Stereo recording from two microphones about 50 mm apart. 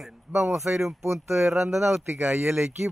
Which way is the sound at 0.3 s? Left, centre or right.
Right.